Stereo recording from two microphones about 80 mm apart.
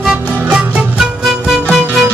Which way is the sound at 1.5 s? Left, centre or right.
Centre.